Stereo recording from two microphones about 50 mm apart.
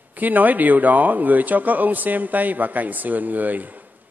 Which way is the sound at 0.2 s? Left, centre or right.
Right.